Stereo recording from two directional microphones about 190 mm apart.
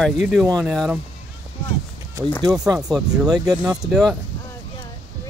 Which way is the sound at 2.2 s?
5° left (ahead or behind).